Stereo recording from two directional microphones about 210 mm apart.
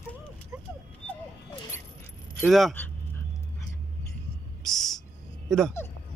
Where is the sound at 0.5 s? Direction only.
5° right (ahead or behind).